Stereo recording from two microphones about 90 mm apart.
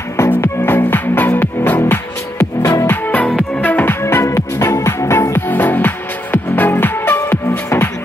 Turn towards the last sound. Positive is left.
turn(degrees=30)  # may be behind; listen again after turning